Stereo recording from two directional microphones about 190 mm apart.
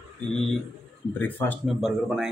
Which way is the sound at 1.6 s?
Centre (ahead or behind).